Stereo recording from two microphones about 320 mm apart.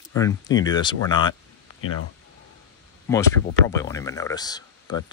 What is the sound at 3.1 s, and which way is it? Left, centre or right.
Speech, centre.